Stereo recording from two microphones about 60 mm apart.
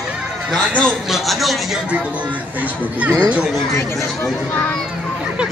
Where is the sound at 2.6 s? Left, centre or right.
Right.